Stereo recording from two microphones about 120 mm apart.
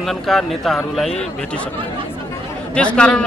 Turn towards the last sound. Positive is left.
turn(degrees=10)  # may be behind; listen again after turning